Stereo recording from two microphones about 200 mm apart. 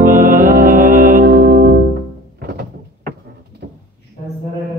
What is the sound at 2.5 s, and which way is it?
Door, 50° right (ahead or behind).